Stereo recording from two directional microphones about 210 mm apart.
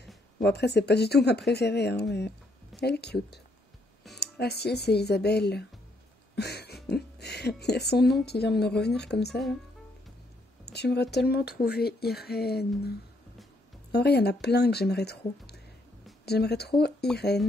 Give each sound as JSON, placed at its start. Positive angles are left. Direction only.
{"t": 0.4, "sound": "speech", "side_deg": 50}
{"t": 6.3, "sound": "a sound", "side_deg": 50}
{"t": 6.9, "sound": "music", "side_deg": 50}
{"t": 7.6, "sound": "speech", "side_deg": 50}
{"t": 10.6, "sound": "speech", "side_deg": 50}
{"t": 13.9, "sound": "speech", "side_deg": 50}